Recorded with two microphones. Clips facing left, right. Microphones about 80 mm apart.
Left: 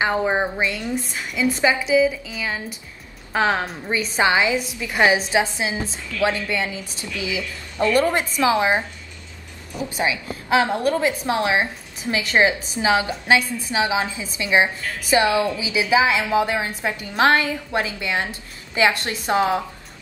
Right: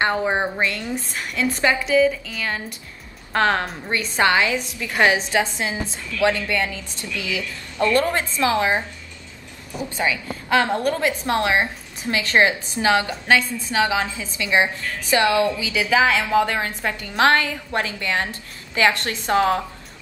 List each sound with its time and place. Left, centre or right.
0.0 s a woman's voice: centre
0.6 s a woman's voice: centre
4.2 s a woman's voice: centre
9.8 s a woman's voice: centre